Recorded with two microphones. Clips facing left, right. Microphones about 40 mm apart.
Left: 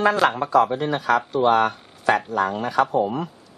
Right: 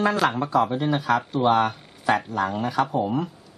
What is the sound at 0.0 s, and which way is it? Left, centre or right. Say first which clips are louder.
Speech: left 3 dB; centre.